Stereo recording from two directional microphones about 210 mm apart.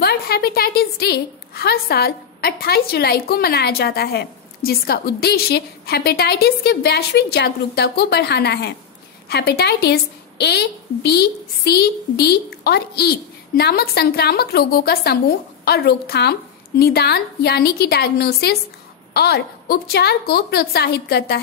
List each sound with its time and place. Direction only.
0.0 s a woman's voice: 50° left (ahead or behind)